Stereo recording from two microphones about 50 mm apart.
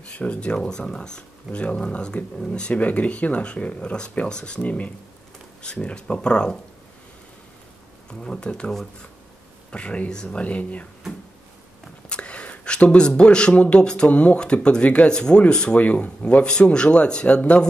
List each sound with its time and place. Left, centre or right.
0.1 s speech: left
8.1 s speech: centre
12.1 s speech: left